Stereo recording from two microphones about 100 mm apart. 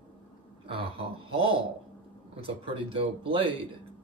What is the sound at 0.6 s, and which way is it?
Speech, 65° right (ahead or behind).